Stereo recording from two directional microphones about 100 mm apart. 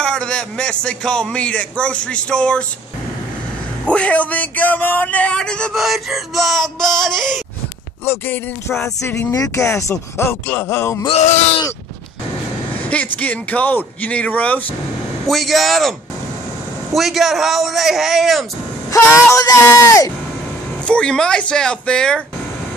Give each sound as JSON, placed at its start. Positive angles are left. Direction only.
{"t": 0.0, "sound": "a man's voice", "side_deg": 10}
{"t": 3.8, "sound": "a man's voice", "side_deg": 15}
{"t": 5.8, "sound": "male singing", "side_deg": 0}
{"t": 8.0, "sound": "speech", "side_deg": 25}
{"t": 12.9, "sound": "a man's voice", "side_deg": 15}
{"t": 15.2, "sound": "male singing", "side_deg": 0}
{"t": 16.9, "sound": "male singing", "side_deg": 0}
{"t": 18.9, "sound": "speech", "side_deg": 30}
{"t": 20.8, "sound": "a man's voice", "side_deg": 10}